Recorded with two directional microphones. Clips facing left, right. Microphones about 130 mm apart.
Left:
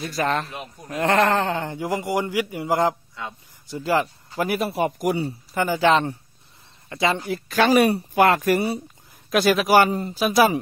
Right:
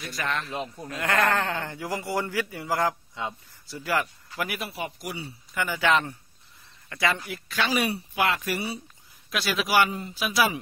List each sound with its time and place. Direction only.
0.0 s speech: 40° left (ahead or behind)
0.5 s speech: 30° right (ahead or behind)
0.8 s speech: 30° left (ahead or behind); by 5.3 s 50° left (ahead or behind)
5.5 s speech: 35° left (ahead or behind)